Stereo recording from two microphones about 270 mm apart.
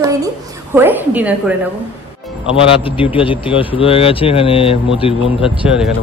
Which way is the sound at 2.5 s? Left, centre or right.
Centre.